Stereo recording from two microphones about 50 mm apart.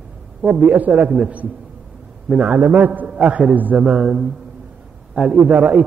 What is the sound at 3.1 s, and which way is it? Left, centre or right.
Speech, right.